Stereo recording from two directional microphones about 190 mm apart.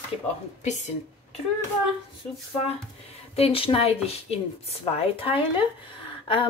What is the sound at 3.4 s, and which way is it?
A woman's voice, 30° left (ahead or behind).